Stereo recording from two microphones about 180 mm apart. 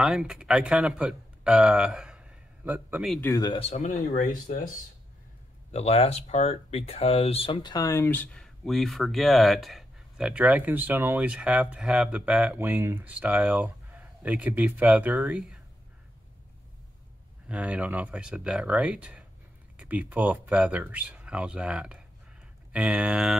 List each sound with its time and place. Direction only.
0.0 s speech: 5° right (ahead or behind)
3.2 s speech: 20° left (ahead or behind)
4.1 s speech: 45° left (ahead or behind)
5.7 s speech: 35° left (ahead or behind); by 15.6 s centre (ahead or behind)
17.5 s speech: 5° right (ahead or behind)